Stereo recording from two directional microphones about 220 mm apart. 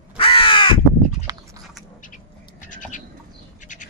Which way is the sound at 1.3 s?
15° right (ahead or behind).